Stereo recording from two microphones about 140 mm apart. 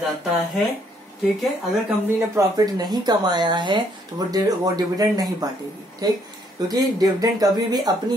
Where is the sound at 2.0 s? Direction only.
25° right (ahead or behind).